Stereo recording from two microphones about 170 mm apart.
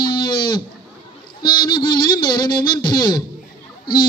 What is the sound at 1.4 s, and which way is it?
A man's voice, 25° left (ahead or behind).